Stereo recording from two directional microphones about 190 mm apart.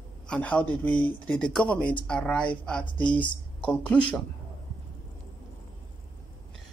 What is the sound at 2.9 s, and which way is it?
Speech, 25° left (ahead or behind).